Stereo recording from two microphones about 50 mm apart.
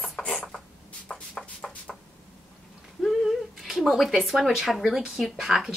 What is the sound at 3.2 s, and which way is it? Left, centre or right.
Speech, centre.